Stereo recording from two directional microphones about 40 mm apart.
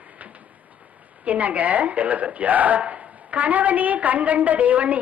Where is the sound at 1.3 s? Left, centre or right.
Right.